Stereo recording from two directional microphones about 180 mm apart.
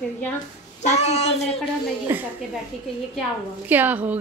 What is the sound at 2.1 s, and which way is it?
Speech, 10° right (ahead or behind).